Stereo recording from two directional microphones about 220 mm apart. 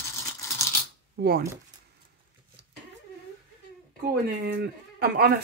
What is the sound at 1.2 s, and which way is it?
Speech, 45° right (ahead or behind).